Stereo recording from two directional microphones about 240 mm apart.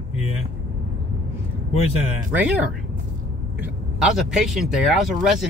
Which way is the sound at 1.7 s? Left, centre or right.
Left.